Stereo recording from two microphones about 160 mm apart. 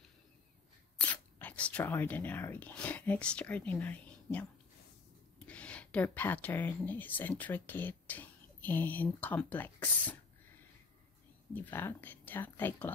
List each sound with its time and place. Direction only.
0.9 s speech: 10° left (ahead or behind)
11.5 s speech: 10° left (ahead or behind)